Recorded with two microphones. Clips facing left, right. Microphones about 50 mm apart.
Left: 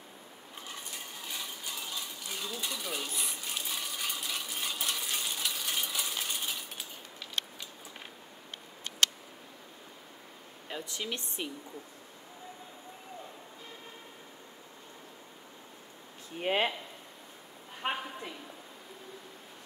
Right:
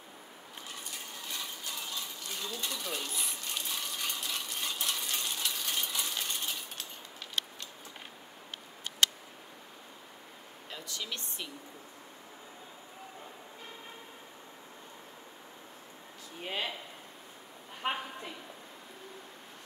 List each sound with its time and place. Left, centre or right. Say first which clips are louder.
1.2 s coin: even; centre
10.7 s speech: left 3 dB; left
16.3 s speech: left 7 dB; left
17.8 s a sound: even; centre